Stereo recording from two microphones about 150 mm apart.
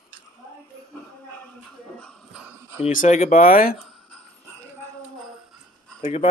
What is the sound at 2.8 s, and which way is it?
Speech, 60° left (ahead or behind).